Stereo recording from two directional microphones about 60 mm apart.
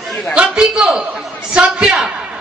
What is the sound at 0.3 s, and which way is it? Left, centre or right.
A man's voice, centre.